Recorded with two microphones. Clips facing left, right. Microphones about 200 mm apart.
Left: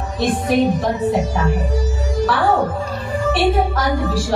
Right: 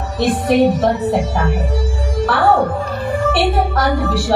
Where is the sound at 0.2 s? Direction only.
70° right (ahead or behind).